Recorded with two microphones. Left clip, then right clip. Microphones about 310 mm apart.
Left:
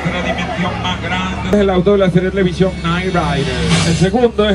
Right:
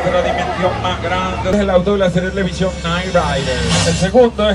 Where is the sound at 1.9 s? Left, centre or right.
Centre.